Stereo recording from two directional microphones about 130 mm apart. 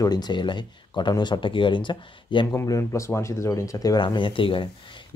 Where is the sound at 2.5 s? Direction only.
25° left (ahead or behind).